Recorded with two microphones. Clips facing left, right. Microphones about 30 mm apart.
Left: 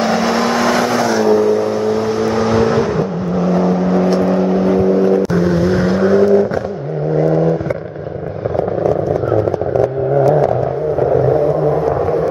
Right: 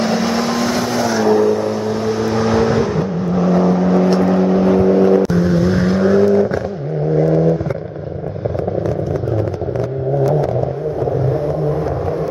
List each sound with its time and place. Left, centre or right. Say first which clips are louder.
0.0 s vehicle: left 2 dB; centre
5.3 s vehicle: left 1 dB; centre
11.0 s a sound: left 6 dB; left